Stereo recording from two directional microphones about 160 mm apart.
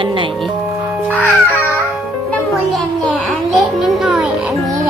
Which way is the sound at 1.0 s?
10° left (ahead or behind).